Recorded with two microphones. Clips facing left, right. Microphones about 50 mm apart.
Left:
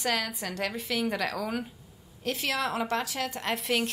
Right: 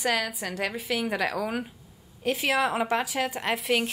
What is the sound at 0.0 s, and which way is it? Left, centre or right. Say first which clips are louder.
Speech: right 3 dB; centre.